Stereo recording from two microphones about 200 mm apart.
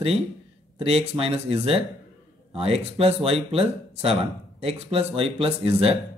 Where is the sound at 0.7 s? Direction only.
30° right (ahead or behind).